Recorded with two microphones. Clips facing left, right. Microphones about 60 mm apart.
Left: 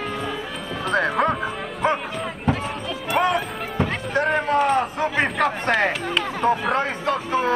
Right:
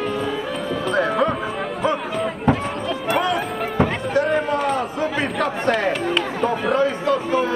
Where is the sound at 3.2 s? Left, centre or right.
Left.